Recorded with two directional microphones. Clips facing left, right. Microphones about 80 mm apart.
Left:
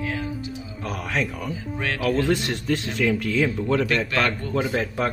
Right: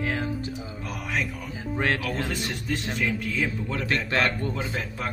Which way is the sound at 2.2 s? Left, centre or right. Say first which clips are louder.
Left 7 dB; left.